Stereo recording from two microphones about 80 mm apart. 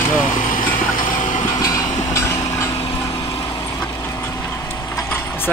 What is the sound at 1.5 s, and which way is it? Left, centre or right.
Vehicle, left.